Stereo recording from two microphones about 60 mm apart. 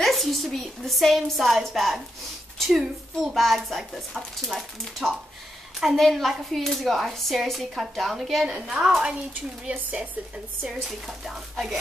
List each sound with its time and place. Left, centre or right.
0.0 s speech: centre
8.5 s a woman's voice: centre
9.7 s a woman's voice: right
10.7 s speech: centre